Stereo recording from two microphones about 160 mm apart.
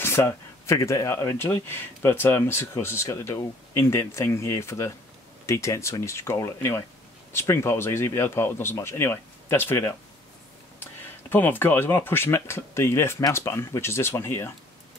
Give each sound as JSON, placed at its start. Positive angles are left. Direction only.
{"t": 0.0, "sound": "speech", "side_deg": 15}